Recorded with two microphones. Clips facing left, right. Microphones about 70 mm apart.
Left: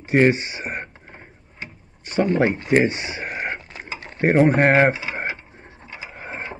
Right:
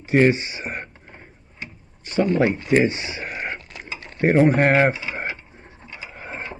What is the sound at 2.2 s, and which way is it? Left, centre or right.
Speech, centre.